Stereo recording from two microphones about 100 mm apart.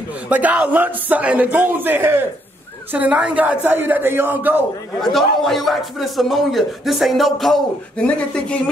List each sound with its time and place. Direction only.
0.3 s a woman's voice: 15° right (ahead or behind)
5.0 s speech: 5° left (ahead or behind)